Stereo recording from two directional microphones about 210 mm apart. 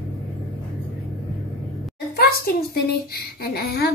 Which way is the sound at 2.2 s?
50° left (ahead or behind).